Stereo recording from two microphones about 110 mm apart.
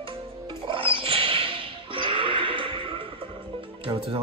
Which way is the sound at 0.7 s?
50° right (ahead or behind).